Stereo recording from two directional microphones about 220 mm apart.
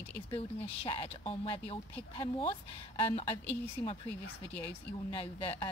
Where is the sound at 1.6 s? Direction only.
10° left (ahead or behind).